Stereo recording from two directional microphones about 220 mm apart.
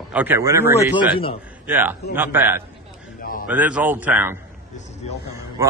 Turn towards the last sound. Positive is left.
turn(degrees=-15)  # may be behind; listen again after turning